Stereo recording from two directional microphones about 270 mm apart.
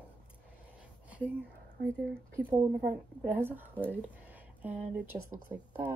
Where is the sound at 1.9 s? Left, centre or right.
Centre.